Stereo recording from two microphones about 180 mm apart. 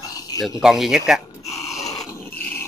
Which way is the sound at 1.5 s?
15° left (ahead or behind).